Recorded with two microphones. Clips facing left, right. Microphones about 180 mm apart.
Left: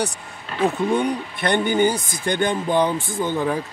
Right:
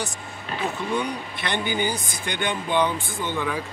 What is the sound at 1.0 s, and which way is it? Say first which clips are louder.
Speech: left 5 dB; 45° left (ahead or behind).